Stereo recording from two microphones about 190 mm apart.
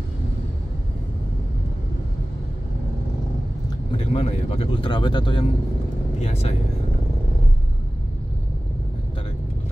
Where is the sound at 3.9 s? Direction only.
30° left (ahead or behind).